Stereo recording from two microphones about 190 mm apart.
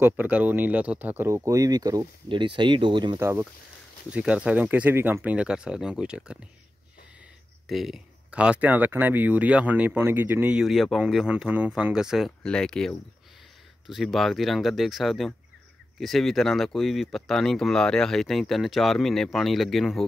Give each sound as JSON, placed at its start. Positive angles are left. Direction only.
{"t": 0.0, "sound": "speech", "side_deg": -10}
{"t": 3.2, "sound": "speech", "side_deg": -15}
{"t": 7.6, "sound": "speech", "side_deg": 0}